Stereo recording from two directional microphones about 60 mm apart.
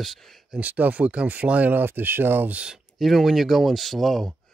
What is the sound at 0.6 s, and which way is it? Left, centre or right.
Speech, right.